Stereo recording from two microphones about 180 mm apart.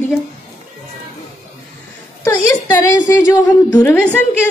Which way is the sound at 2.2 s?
15° left (ahead or behind).